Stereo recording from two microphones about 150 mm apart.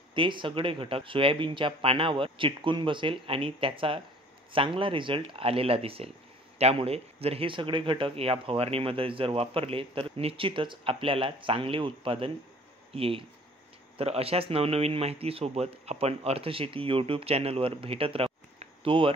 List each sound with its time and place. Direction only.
0.1 s speech: 35° right (ahead or behind)